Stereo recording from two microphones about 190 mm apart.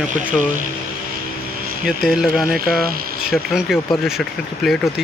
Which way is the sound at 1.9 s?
Centre (ahead or behind).